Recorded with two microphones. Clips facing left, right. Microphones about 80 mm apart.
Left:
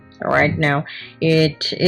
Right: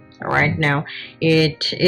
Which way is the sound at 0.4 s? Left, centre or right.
Left.